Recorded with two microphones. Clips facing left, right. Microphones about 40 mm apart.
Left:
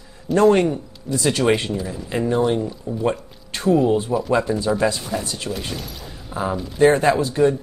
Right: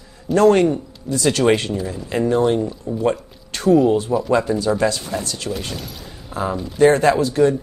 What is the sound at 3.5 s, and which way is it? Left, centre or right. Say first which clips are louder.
Speech: right 3 dB; left.